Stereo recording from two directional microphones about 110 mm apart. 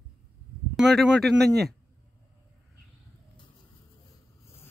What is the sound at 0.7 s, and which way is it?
Speech, centre (ahead or behind).